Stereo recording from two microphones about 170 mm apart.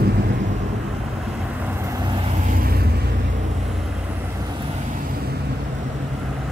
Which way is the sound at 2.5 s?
60° right (ahead or behind).